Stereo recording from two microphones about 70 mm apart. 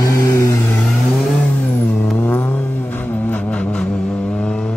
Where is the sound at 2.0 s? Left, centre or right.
Left.